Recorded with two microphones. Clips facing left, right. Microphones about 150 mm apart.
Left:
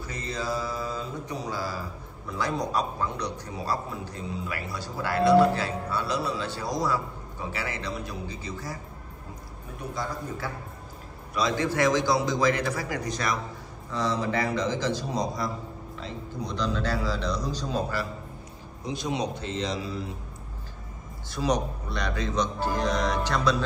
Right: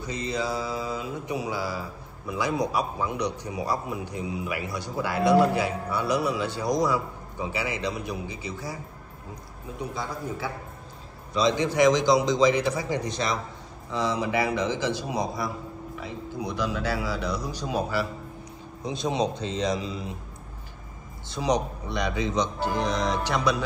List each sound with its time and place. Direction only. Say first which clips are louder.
0.0 s mantra: right 4 dB; 15° right (ahead or behind)
2.2 s a man's voice: right 3 dB; 10° right (ahead or behind)
11.3 s a man's voice: right 3 dB; 20° right (ahead or behind)
13.9 s a man's voice: right 1 dB; 10° right (ahead or behind)
18.9 s a man's voice: right 3 dB; 20° right (ahead or behind)
21.3 s a man's voice: right 1 dB; 20° right (ahead or behind)